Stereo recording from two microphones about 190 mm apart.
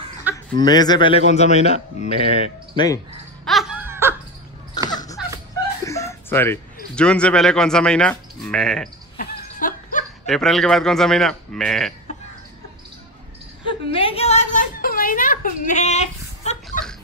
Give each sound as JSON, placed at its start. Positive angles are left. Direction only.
{"t": 0.3, "sound": "speech", "side_deg": 20}
{"t": 1.3, "sound": "speech", "side_deg": 35}
{"t": 3.4, "sound": "music", "side_deg": 0}
{"t": 4.8, "sound": "a sound", "side_deg": 20}
{"t": 5.5, "sound": "speech", "side_deg": 15}
{"t": 9.6, "sound": "dog", "side_deg": 45}
{"t": 10.2, "sound": "speech", "side_deg": 0}
{"t": 13.7, "sound": "a sound", "side_deg": 30}